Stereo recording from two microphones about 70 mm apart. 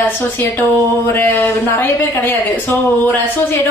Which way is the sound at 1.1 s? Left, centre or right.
Left.